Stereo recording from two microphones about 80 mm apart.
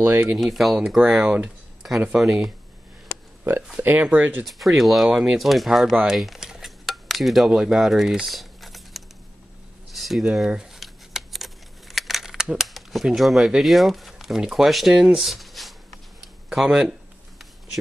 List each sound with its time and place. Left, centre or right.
0.4 s speech: centre
3.8 s speech: right
4.5 s speech: centre
6.1 s cutlery: centre
9.9 s keys jangling: centre
13.5 s speech: centre
16.2 s a sound: centre